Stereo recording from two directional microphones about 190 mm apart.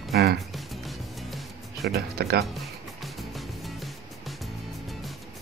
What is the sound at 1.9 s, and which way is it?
Speech, 55° right (ahead or behind).